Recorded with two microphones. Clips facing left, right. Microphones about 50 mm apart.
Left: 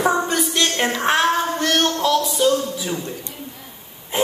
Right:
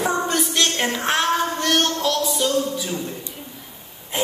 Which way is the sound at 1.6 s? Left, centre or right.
Centre.